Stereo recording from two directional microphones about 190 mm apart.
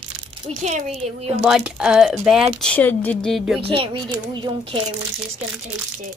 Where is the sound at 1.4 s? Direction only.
5° right (ahead or behind).